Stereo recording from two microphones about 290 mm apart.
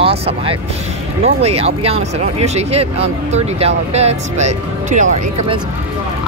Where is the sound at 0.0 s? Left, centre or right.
Centre.